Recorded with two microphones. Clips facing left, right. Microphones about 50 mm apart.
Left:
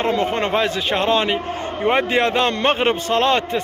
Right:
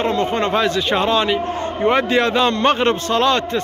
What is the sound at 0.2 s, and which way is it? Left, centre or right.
A man's voice, centre.